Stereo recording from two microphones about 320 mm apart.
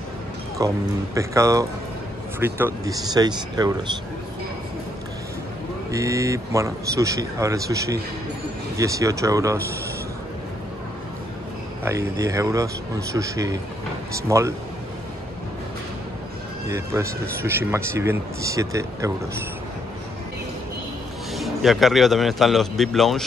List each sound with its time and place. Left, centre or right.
0.6 s speech: centre
5.9 s speech: centre
11.8 s speech: centre
16.6 s speech: centre
21.4 s a man's voice: centre